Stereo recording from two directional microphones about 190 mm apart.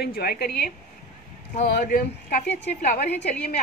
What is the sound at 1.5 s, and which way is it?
Speech, 40° left (ahead or behind).